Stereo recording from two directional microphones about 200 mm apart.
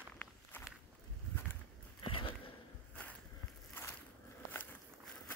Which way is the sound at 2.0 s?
25° left (ahead or behind).